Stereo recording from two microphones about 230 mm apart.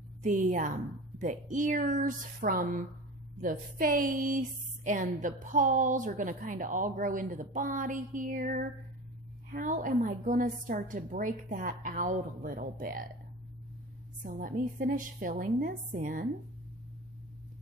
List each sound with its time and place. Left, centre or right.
0.2 s a woman's voice: right
14.2 s a woman's voice: right